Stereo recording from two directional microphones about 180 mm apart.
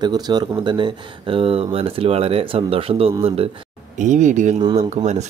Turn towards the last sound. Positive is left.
turn(degrees=-40)  # may be behind; listen again after turning